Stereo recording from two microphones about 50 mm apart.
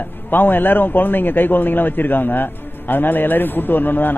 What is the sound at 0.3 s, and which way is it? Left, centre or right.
A man's voice, left.